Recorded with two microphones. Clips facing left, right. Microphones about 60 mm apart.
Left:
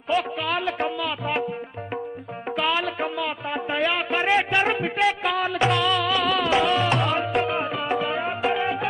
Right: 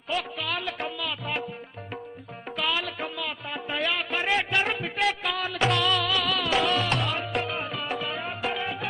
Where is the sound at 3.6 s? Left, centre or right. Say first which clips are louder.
Left 5 dB; centre.